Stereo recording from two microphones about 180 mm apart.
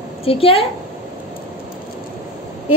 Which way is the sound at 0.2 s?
30° left (ahead or behind).